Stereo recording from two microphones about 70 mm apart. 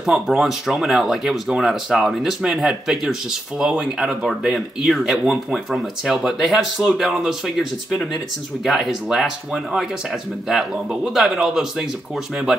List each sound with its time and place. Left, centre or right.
0.0 s speech: centre
8.6 s speech: centre